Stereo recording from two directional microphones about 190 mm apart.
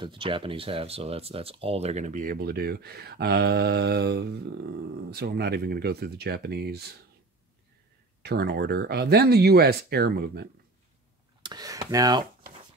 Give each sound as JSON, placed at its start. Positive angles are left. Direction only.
{"t": 0.0, "sound": "speech", "side_deg": -25}
{"t": 8.2, "sound": "speech", "side_deg": -60}
{"t": 11.4, "sound": "speech", "side_deg": -20}